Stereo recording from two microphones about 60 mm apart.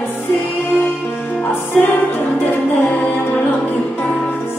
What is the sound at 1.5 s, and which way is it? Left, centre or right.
Music, left.